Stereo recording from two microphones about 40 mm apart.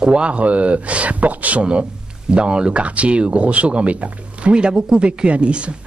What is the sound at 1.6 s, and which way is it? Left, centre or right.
Speech, right.